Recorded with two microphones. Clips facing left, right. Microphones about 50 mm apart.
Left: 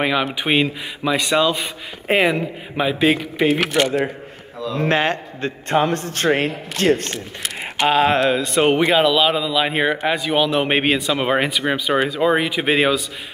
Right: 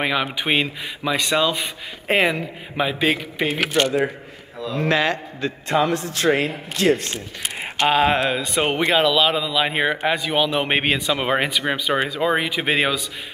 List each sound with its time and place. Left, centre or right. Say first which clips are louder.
0.0 s speech: left 2 dB; centre
4.7 s speech: left 1 dB; left
7.9 s speech: left 3 dB; centre